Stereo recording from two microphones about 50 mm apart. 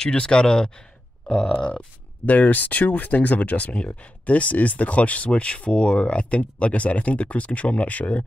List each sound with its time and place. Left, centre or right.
0.0 s speech: centre
2.2 s speech: left